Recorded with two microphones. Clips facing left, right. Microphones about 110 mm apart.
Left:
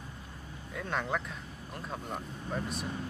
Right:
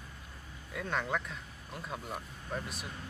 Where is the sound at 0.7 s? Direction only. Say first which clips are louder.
Left 1 dB; centre (ahead or behind).